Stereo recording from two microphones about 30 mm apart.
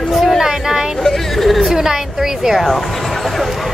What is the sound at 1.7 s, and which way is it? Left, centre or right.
Speech, centre.